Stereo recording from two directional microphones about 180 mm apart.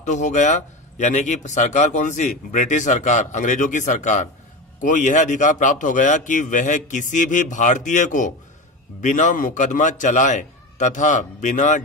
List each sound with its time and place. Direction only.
0.0 s a man's voice: 40° left (ahead or behind)